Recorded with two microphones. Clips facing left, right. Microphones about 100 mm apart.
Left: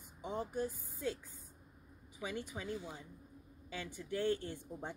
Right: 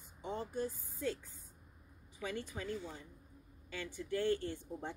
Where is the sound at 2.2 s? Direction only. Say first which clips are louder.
Right 1 dB; 15° left (ahead or behind).